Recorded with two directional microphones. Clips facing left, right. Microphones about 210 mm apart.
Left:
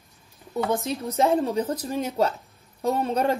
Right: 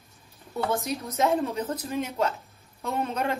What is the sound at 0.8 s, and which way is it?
Speech, 30° left (ahead or behind).